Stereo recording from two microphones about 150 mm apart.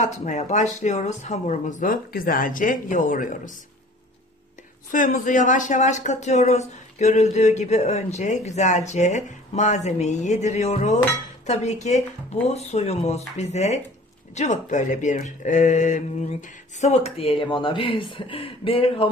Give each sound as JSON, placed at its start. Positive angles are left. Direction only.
{"t": 0.0, "sound": "speech", "side_deg": 50}
{"t": 4.9, "sound": "speech", "side_deg": 60}